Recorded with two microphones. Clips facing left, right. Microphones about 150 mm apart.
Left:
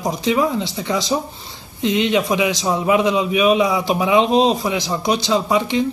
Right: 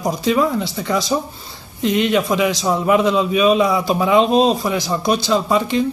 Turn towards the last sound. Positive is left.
turn(degrees=20)  # may be behind; listen again after turning